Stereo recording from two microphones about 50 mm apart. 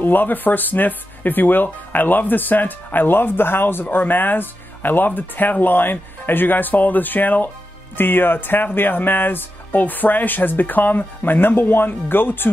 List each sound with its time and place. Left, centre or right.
0.0 s speech: left